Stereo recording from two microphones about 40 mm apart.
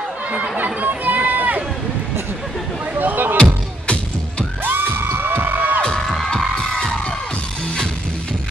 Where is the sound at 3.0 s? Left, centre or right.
Right.